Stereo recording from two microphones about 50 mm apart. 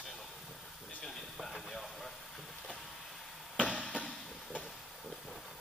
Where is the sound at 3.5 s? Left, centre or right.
Left.